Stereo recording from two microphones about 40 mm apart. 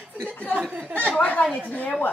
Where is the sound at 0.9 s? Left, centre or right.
Left.